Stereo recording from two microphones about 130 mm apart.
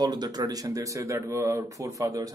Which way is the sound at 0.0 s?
30° right (ahead or behind).